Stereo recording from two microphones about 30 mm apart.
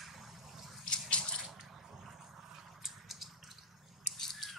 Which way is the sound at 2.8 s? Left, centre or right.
Centre.